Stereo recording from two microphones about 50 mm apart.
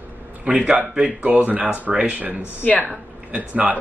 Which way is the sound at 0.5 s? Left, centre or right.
Right.